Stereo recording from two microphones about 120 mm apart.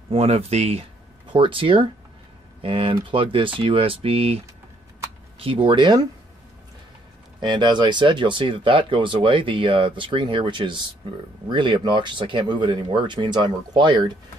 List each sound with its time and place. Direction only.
0.1 s speech: 55° right (ahead or behind)
1.2 s speech: 45° right (ahead or behind)
5.4 s speech: 50° right (ahead or behind)
7.3 s speech: 40° right (ahead or behind)